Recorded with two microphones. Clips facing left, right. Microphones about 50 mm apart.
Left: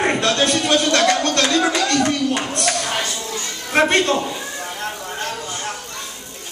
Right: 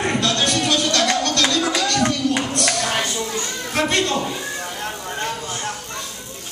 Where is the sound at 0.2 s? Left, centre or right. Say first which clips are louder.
Left 2 dB; left.